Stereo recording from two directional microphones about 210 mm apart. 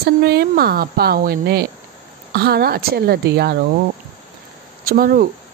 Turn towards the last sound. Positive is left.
turn(degrees=-45)  # may be behind; listen again after turning